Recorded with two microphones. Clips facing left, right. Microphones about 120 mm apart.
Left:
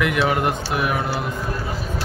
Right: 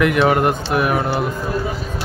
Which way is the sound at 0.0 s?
50° right (ahead or behind).